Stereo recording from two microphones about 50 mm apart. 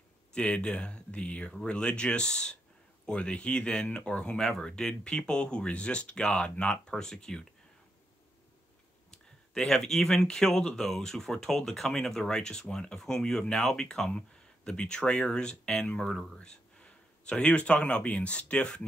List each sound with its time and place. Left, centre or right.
0.3 s speech: left
6.9 s speech: centre
9.1 s speech: centre
16.1 s speech: centre
16.3 s speech: left